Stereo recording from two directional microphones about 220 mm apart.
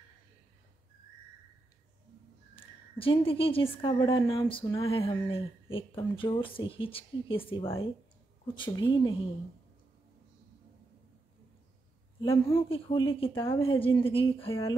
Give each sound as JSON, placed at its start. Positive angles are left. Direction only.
{"t": 2.5, "sound": "a woman's voice", "side_deg": 25}
{"t": 12.2, "sound": "a woman's voice", "side_deg": 20}